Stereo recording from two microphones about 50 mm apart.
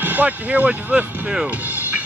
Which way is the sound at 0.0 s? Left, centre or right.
Right.